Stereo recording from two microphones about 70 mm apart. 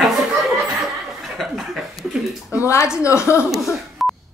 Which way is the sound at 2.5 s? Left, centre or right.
Left.